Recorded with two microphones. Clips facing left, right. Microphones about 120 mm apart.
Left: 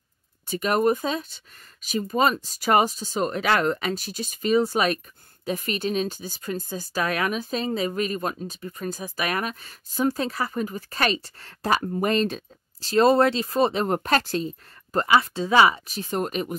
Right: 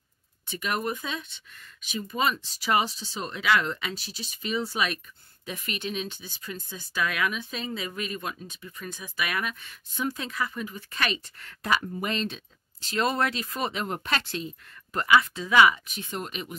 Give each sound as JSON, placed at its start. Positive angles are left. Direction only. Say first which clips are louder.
{"t": 0.5, "sound": "speech", "louder": "left 9 dB", "side_deg": 40}